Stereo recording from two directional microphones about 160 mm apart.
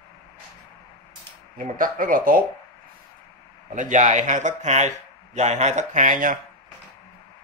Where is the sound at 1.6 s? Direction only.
60° right (ahead or behind).